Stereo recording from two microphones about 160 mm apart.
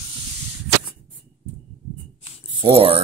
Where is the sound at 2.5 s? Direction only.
35° right (ahead or behind).